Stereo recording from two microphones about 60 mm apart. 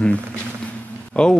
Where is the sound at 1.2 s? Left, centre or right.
Centre.